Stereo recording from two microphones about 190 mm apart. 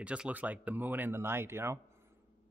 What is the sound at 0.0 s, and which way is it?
Speech, 5° right (ahead or behind).